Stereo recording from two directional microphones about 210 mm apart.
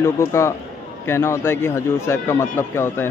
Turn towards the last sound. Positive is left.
turn(degrees=10)  # may be behind; listen again after turning